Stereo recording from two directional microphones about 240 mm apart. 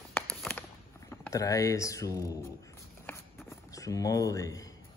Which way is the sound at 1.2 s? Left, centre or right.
Centre.